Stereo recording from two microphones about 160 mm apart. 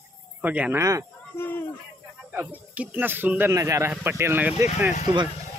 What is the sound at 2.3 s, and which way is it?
Speech, 10° right (ahead or behind).